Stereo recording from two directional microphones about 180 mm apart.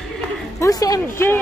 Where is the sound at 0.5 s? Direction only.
20° left (ahead or behind).